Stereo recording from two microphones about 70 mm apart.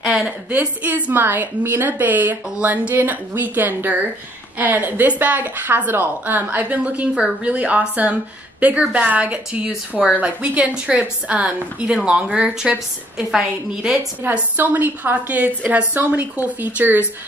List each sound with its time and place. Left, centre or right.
0.0 s a sound: centre
0.5 s a woman's voice: right
14.3 s a woman's voice: right